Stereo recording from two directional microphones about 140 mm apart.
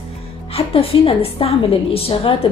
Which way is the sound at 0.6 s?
45° left (ahead or behind).